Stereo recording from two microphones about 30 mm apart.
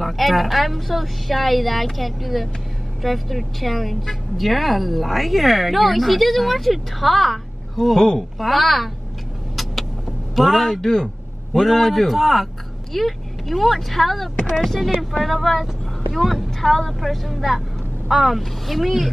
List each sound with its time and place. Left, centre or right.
0.0 s a woman's voice: centre
10.3 s a woman's voice: centre
10.7 s speech: centre
11.5 s a woman's voice: centre